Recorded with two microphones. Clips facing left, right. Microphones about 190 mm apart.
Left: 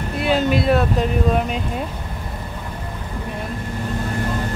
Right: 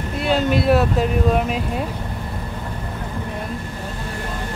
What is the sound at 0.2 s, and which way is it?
Speech, centre (ahead or behind).